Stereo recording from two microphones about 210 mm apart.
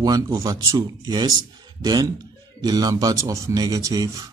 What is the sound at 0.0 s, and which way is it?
A man's voice, 15° right (ahead or behind).